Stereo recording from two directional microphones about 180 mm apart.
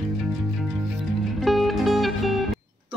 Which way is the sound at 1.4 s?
Centre (ahead or behind).